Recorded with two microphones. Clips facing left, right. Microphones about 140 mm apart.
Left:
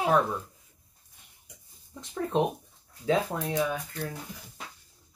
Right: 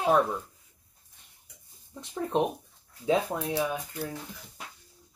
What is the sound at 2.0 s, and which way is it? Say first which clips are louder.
Speech: even; 15° right (ahead or behind).